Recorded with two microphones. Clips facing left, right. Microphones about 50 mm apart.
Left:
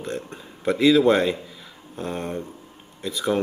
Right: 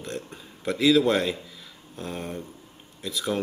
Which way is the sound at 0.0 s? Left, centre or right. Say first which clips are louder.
Left 4 dB; centre.